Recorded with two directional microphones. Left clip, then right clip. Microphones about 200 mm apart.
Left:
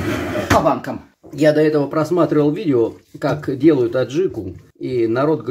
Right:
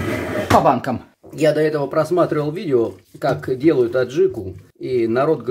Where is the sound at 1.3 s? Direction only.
Centre (ahead or behind).